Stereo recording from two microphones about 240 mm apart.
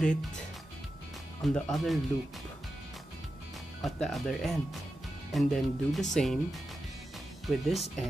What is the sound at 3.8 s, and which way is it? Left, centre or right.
Speech, centre.